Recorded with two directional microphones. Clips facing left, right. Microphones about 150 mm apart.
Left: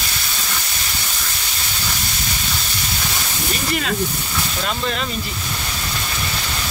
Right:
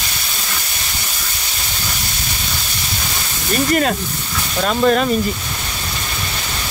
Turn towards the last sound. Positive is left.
turn(degrees=-45)  # may be behind; listen again after turning